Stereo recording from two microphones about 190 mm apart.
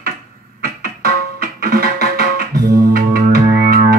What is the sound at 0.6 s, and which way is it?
Music, 55° right (ahead or behind).